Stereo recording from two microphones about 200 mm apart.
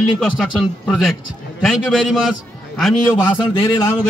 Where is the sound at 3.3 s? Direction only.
20° left (ahead or behind).